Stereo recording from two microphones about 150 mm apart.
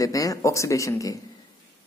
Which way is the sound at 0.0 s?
25° left (ahead or behind).